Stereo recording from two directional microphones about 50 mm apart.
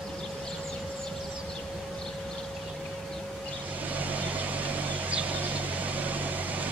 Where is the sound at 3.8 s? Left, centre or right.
Right.